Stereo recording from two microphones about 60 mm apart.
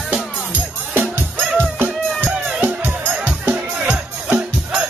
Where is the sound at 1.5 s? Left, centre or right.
Right.